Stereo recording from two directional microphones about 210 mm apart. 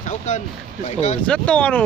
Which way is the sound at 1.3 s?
5° left (ahead or behind).